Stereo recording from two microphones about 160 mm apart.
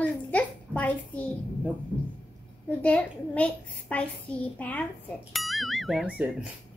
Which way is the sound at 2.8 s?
10° left (ahead or behind).